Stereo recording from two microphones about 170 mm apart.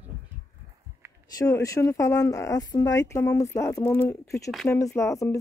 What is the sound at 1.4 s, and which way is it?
Speech, 20° left (ahead or behind).